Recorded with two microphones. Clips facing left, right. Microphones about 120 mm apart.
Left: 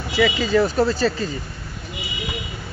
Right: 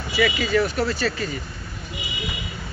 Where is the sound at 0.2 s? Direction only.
30° left (ahead or behind).